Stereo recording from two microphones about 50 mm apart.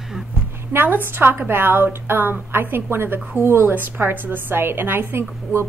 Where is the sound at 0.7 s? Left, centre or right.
Right.